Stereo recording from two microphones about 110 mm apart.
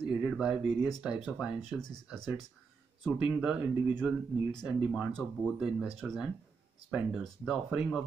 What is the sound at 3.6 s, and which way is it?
Speech, 20° right (ahead or behind).